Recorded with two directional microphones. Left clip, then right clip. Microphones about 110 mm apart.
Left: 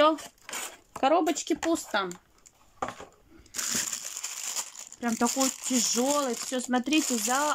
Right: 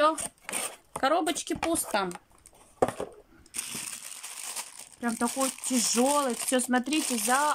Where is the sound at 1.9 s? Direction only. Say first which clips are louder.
Even; 5° right (ahead or behind).